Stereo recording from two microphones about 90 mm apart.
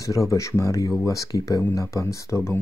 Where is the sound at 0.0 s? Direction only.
35° left (ahead or behind).